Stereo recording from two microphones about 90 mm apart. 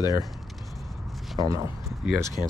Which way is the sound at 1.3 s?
35° right (ahead or behind).